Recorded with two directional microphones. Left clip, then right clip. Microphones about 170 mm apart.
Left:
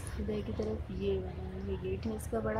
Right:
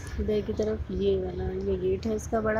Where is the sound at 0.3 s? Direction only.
10° right (ahead or behind).